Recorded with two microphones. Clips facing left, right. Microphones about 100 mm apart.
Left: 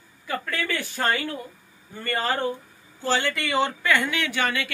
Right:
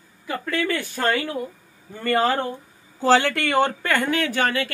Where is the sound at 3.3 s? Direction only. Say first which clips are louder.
Right 4 dB; 55° right (ahead or behind); by 4.7 s 40° right (ahead or behind).